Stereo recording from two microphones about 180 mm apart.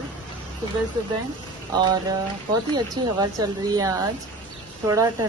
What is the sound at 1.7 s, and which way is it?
A woman's voice, 20° right (ahead or behind).